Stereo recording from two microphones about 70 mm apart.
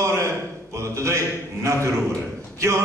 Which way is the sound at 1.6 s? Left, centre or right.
Right.